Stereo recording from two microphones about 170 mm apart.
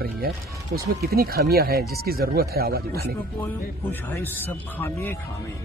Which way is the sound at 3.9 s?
10° left (ahead or behind).